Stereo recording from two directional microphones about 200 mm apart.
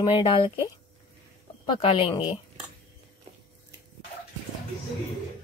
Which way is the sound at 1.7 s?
25° left (ahead or behind).